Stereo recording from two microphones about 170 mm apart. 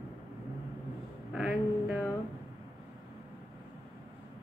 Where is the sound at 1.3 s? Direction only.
5° right (ahead or behind).